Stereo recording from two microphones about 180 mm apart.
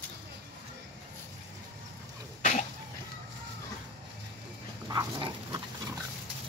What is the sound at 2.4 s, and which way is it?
Cough, 40° left (ahead or behind).